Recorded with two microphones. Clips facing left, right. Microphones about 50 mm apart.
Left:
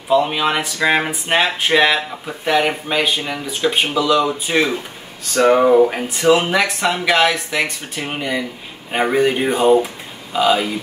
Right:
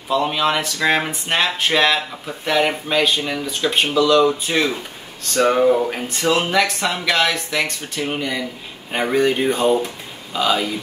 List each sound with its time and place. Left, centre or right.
0.1 s speech: centre
5.3 s a sound: left
6.5 s speech: centre